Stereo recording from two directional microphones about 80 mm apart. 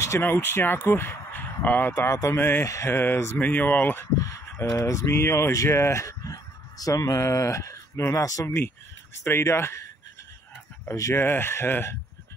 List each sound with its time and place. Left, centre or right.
0.2 s speech: left
2.0 s speech: left
2.3 s speech: left
2.6 s speech: left
2.9 s speech: left
4.6 s speech: left
7.9 s speech: left
8.2 s speech: left
11.1 s speech: left